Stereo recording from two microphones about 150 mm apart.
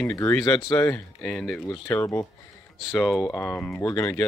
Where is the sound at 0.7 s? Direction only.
15° left (ahead or behind).